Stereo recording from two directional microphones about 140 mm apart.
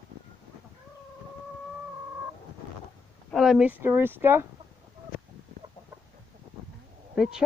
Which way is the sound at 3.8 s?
15° right (ahead or behind).